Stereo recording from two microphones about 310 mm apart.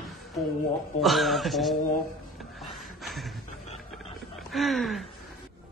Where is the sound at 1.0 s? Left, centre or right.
Centre.